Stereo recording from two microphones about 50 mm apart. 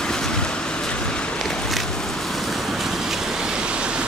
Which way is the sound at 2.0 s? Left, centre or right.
Centre.